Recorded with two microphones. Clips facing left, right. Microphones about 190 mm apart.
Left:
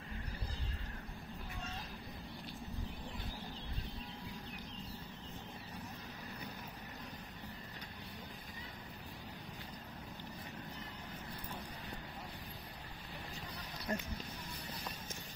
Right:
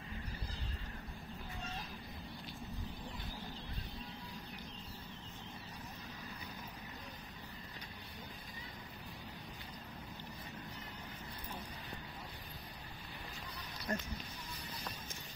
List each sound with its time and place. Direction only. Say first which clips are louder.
13.9 s speech: even; 15° left (ahead or behind)